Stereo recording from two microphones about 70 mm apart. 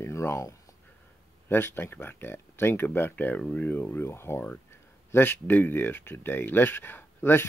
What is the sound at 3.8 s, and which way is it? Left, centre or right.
Speech, left.